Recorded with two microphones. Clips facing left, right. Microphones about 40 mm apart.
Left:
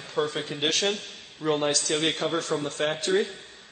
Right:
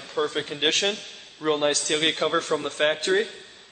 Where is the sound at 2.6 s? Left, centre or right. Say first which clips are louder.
Right 4 dB; right.